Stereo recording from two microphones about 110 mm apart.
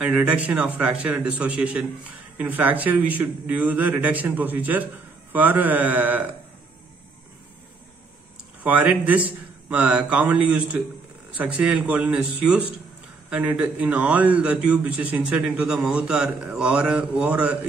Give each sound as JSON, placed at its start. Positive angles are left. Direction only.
{"t": 0.0, "sound": "a man's voice", "side_deg": -10}
{"t": 8.6, "sound": "a man's voice", "side_deg": -15}